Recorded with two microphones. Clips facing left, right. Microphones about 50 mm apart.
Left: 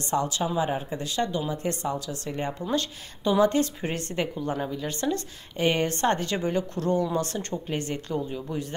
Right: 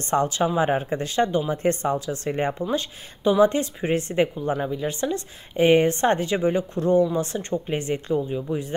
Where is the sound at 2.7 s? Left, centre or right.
Centre.